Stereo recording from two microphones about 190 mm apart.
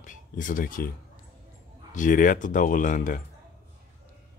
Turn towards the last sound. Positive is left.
turn(degrees=45)  # may be behind; listen again after turning